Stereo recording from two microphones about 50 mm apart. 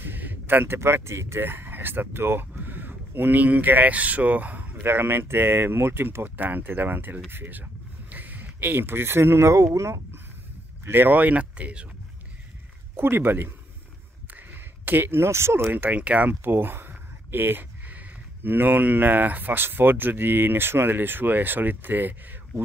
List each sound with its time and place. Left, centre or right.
0.0 s a sound: right
0.7 s speech: right
1.4 s speech: right
2.6 s speech: right
4.8 s speech: right
6.2 s speech: right
10.9 s speech: right
12.9 s speech: right
14.5 s speech: right
15.7 s speech: right